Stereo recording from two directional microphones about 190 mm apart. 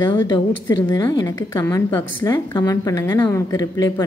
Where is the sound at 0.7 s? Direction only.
20° left (ahead or behind).